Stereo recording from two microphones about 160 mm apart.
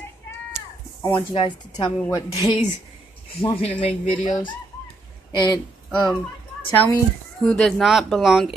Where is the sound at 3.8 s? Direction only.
35° left (ahead or behind).